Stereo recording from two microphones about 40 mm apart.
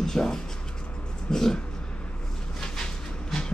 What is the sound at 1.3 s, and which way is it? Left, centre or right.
Dog, centre.